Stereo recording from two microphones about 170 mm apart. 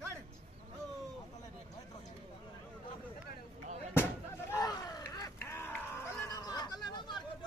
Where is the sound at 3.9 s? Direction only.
15° left (ahead or behind).